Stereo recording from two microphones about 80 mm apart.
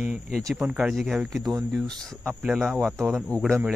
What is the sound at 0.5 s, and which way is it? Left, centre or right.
Speech, centre.